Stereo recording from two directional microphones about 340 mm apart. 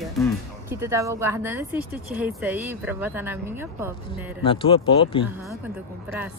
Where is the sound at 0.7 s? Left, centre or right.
Centre.